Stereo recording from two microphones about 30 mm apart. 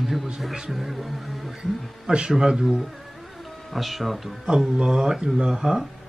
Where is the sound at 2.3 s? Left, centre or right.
Centre.